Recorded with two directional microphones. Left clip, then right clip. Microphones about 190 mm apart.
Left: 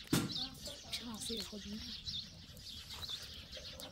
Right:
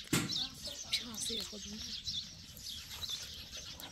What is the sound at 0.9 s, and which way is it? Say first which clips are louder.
Music: right 6 dB; 50° left (ahead or behind).